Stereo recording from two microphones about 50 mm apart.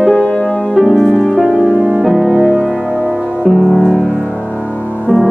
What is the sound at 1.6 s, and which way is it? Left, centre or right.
Music, centre.